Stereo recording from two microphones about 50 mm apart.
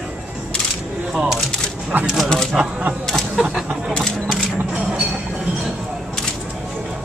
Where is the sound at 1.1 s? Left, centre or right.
Centre.